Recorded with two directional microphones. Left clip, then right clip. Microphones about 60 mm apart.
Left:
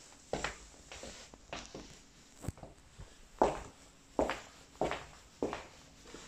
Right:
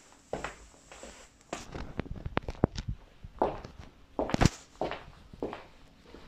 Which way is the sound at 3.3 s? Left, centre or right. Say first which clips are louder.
Even; left.